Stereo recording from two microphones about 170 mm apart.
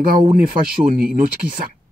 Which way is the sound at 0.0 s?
60° right (ahead or behind).